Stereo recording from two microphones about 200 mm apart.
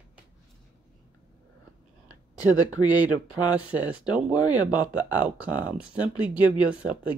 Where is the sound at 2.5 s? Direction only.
20° left (ahead or behind).